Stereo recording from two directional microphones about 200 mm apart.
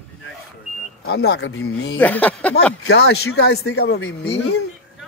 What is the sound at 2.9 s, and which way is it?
Speech, 55° left (ahead or behind).